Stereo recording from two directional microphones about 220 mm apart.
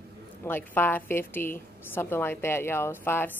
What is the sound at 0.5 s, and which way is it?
A woman's voice, 10° left (ahead or behind).